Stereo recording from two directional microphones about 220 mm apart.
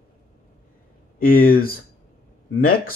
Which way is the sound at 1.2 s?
40° left (ahead or behind).